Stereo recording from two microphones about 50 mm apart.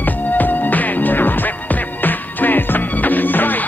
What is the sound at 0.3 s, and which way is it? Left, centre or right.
Music, left.